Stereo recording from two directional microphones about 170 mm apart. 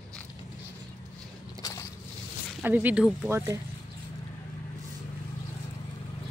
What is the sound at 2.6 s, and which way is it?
Speech, 10° right (ahead or behind).